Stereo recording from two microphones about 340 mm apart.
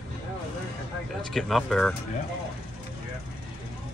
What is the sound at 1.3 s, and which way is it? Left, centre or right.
Speech, centre.